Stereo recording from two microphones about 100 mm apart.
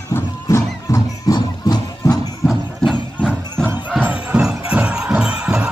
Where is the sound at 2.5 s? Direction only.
5° right (ahead or behind).